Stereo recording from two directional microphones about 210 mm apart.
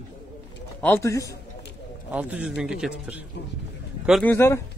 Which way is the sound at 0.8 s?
10° left (ahead or behind).